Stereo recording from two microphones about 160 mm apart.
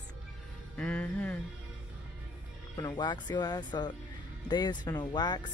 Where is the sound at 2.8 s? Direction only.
30° left (ahead or behind).